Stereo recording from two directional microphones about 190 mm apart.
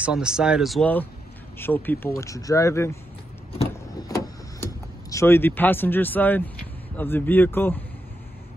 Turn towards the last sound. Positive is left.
turn(degrees=10)  # may be behind; listen again after turning